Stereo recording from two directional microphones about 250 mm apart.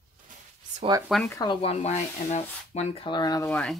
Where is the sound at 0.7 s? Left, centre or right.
Right.